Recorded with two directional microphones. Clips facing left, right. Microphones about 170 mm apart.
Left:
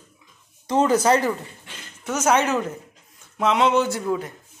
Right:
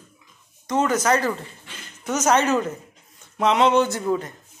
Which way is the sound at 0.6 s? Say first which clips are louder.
Left 2 dB; 30° left (ahead or behind).